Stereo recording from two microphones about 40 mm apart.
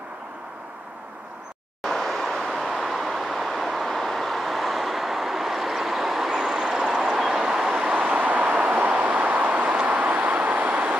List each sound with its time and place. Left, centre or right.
1.9 s vehicle: centre
6.3 s vehicle: centre
7.9 s vehicle: right